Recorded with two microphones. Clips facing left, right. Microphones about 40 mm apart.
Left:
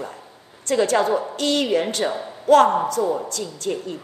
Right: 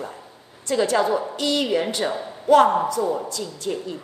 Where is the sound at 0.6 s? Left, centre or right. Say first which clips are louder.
Left 1 dB; left.